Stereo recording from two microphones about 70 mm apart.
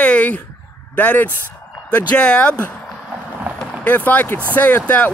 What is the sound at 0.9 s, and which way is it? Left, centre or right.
Speech, left.